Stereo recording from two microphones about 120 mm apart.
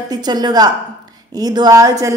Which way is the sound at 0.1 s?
35° right (ahead or behind).